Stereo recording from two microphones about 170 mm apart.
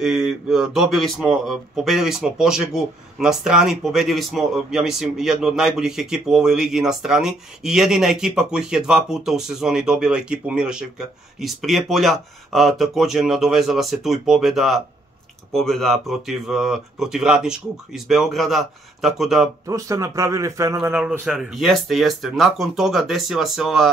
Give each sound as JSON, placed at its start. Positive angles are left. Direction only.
{"t": 0.0, "sound": "a man's voice", "side_deg": -5}
{"t": 19.6, "sound": "a man's voice", "side_deg": -20}